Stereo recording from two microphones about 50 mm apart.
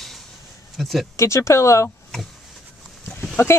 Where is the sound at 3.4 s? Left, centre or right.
Left.